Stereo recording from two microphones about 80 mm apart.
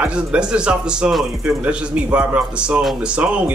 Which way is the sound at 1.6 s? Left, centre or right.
Centre.